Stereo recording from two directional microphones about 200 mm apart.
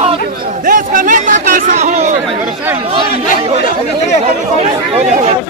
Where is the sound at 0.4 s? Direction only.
45° right (ahead or behind).